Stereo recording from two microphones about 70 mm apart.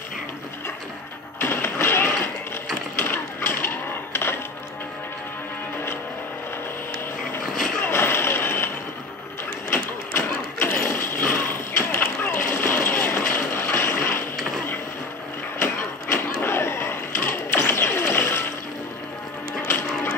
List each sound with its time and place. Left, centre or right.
1.4 s music: left
3.0 s cash register: left
7.3 s vehicle: left
9.7 s a sound: left
15.6 s a sound: left
19.6 s music: left